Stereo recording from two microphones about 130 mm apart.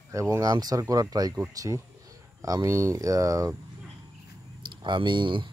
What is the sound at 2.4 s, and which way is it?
Speech, 25° right (ahead or behind).